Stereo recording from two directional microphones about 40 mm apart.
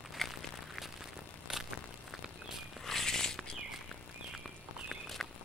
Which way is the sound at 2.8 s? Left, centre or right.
Centre.